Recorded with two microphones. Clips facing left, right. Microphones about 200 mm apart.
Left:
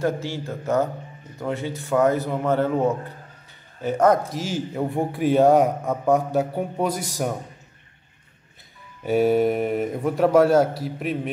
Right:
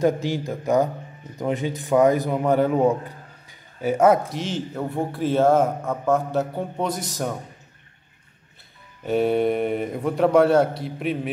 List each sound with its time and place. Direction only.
0.0 s a man's voice: 15° right (ahead or behind)
4.4 s a man's voice: 10° left (ahead or behind)
9.0 s speech: 5° left (ahead or behind)